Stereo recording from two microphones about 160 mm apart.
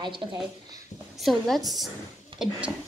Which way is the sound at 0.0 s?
30° right (ahead or behind).